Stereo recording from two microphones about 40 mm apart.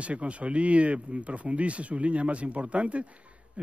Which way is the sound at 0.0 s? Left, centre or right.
Right.